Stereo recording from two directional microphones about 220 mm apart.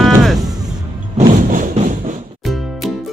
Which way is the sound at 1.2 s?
35° right (ahead or behind).